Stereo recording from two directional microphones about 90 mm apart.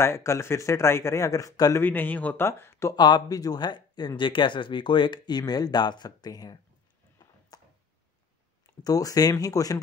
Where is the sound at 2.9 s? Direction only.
50° left (ahead or behind).